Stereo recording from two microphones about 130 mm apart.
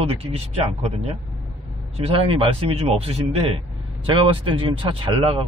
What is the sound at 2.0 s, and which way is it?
A man's voice, 50° right (ahead or behind).